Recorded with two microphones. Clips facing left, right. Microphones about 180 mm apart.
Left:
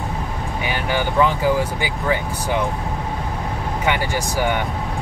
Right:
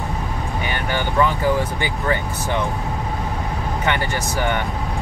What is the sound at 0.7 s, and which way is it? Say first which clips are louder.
Speech: left 3 dB; 10° left (ahead or behind).